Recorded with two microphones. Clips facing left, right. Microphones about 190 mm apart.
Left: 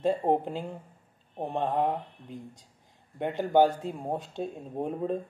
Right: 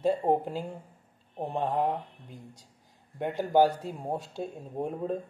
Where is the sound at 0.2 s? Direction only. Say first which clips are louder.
Left 1 dB; 20° left (ahead or behind).